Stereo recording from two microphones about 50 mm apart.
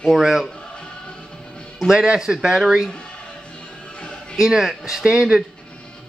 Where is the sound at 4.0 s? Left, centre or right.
Centre.